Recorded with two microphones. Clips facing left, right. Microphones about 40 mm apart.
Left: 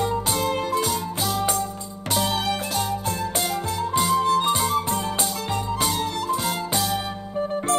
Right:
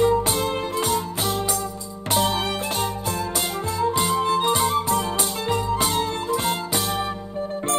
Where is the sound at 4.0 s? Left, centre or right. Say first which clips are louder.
Left 4 dB; right.